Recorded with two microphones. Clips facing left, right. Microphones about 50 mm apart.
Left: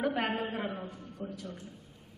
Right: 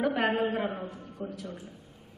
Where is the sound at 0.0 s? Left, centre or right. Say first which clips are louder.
Right 4 dB; right.